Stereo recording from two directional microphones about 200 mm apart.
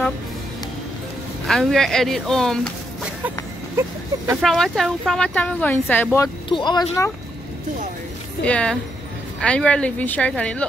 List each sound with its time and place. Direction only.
1.5 s speech: centre (ahead or behind)
4.4 s speech: centre (ahead or behind); by 7.1 s 20° left (ahead or behind)
8.5 s speech: 5° left (ahead or behind)